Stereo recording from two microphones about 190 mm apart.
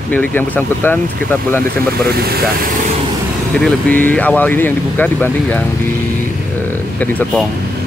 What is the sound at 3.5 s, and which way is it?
Speech, 10° left (ahead or behind).